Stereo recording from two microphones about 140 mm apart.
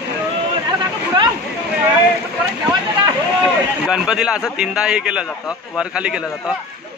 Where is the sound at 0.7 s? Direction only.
35° right (ahead or behind).